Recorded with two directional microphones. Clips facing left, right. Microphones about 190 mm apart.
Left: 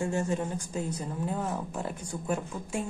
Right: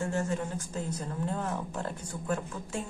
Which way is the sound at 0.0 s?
15° left (ahead or behind).